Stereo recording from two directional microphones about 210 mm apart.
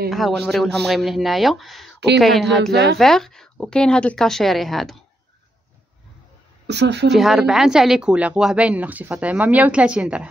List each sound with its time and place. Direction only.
0.1 s a woman's voice: centre (ahead or behind)
2.7 s speech: 55° right (ahead or behind)
3.0 s a woman's voice: centre (ahead or behind)
6.7 s speech: 55° right (ahead or behind)
7.1 s a woman's voice: centre (ahead or behind)